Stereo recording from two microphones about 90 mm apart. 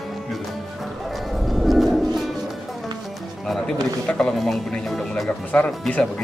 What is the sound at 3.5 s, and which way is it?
Speech, 5° left (ahead or behind).